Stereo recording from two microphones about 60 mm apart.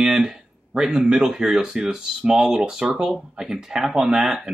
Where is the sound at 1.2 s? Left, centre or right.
Centre.